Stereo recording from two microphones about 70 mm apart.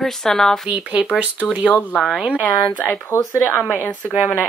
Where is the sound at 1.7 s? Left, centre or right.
Centre.